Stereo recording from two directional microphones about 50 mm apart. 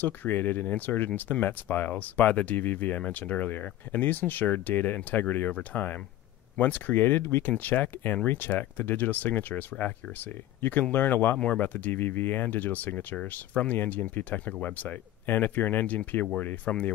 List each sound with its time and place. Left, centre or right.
0.0 s speech: left
11.3 s speech: left
11.6 s speech: left